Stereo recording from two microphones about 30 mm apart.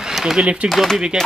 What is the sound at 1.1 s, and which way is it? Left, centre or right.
Speech, centre.